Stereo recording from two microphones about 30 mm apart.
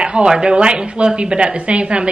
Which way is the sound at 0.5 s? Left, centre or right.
Right.